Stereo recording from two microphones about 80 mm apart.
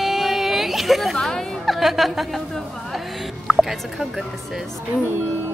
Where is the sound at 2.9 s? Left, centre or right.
Centre.